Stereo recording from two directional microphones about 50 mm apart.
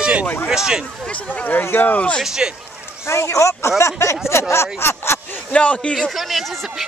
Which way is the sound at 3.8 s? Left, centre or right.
Left.